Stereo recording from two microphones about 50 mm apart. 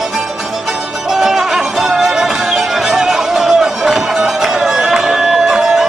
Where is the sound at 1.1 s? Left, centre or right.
Centre.